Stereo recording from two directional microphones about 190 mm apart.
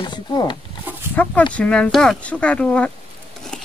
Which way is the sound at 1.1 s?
10° left (ahead or behind).